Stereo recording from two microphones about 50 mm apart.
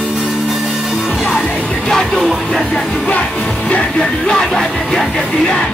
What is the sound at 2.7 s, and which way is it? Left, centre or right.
Music, left.